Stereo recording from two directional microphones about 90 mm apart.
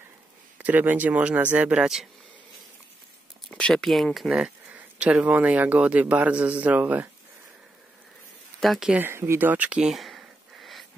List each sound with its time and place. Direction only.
0.6 s speech: 20° right (ahead or behind)
3.4 s speech: 10° left (ahead or behind); by 7.1 s 20° right (ahead or behind)
8.5 s speech: centre (ahead or behind)
8.9 s speech: 25° right (ahead or behind); by 10.9 s centre (ahead or behind)